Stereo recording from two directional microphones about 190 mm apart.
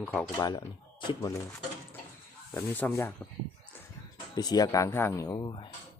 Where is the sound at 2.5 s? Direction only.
10° left (ahead or behind).